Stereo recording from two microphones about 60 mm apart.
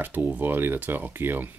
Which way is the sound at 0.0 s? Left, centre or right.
Right.